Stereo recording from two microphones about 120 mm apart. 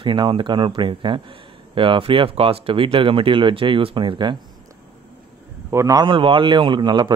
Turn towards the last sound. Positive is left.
turn(degrees=-40)  # may be behind; listen again after turning